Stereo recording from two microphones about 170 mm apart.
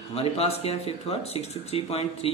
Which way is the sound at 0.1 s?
35° left (ahead or behind).